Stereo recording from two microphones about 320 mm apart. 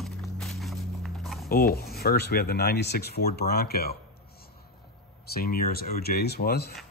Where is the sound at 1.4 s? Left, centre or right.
Left.